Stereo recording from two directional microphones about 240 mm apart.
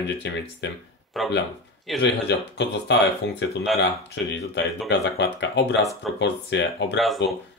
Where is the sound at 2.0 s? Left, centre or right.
Left.